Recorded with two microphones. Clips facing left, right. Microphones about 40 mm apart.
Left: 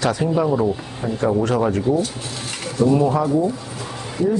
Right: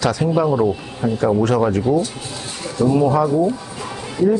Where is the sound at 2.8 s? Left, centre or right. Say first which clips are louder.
Left 1 dB; right.